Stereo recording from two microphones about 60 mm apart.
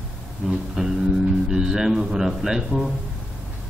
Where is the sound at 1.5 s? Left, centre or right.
Centre.